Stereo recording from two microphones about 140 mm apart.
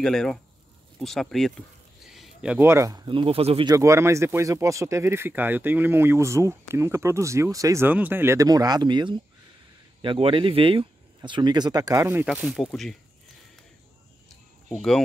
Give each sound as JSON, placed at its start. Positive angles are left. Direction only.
{"t": 0.0, "sound": "speech", "side_deg": 5}
{"t": 2.0, "sound": "a sound", "side_deg": -5}
{"t": 2.7, "sound": "speech", "side_deg": -25}
{"t": 3.1, "sound": "speech", "side_deg": -40}
{"t": 3.6, "sound": "speech", "side_deg": -25}
{"t": 12.3, "sound": "speech", "side_deg": -5}
{"t": 14.8, "sound": "speech", "side_deg": 5}